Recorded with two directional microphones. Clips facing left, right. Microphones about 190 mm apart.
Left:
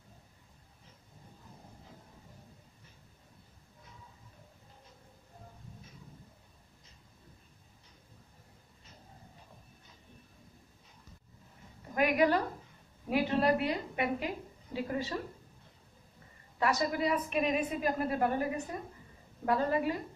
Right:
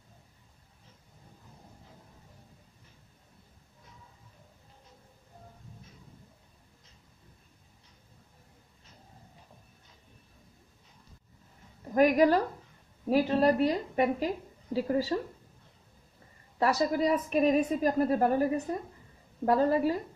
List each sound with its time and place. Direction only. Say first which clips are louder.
11.9 s a woman's voice: right 5 dB; 40° right (ahead or behind)
16.5 s a woman's voice: right 4 dB; 35° right (ahead or behind)